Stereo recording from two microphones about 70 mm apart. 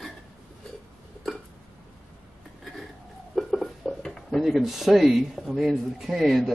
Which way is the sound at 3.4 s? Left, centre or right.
Centre.